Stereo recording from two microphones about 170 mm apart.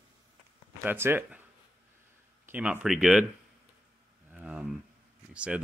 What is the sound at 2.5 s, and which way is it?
Speech, 5° right (ahead or behind).